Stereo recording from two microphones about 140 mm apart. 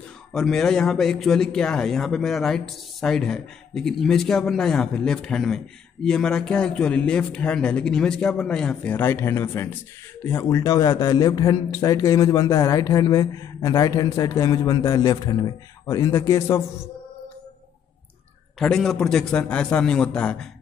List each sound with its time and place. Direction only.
0.3 s speech: 5° left (ahead or behind); by 16.6 s 20° left (ahead or behind)
18.6 s speech: 5° left (ahead or behind)